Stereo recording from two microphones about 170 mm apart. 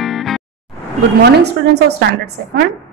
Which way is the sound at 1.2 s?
75° right (ahead or behind).